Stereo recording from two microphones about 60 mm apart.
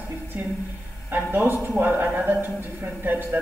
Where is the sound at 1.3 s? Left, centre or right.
Right.